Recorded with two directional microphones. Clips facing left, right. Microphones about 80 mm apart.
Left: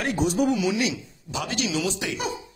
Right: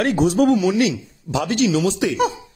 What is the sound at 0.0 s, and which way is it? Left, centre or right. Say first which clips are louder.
Speech: right 7 dB; right.